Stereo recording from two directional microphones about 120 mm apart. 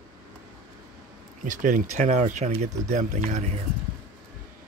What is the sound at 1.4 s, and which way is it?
Speech, 90° right.